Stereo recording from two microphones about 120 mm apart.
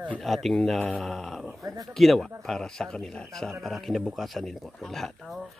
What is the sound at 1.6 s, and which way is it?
Speech, 35° right (ahead or behind).